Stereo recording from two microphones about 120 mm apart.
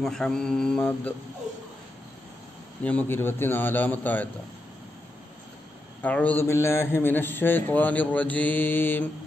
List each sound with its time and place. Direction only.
0.0 s a man's voice: 5° left (ahead or behind)
2.8 s a man's voice: 10° left (ahead or behind)
6.0 s a man's voice: 10° left (ahead or behind)